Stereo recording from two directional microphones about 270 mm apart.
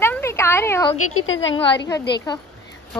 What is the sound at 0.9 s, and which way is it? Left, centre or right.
Speech, left.